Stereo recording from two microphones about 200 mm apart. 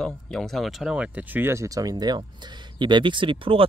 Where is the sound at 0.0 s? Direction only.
5° left (ahead or behind).